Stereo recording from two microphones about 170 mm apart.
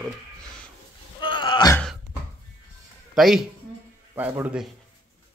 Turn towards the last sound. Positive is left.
turn(degrees=-5)  # may be behind; listen again after turning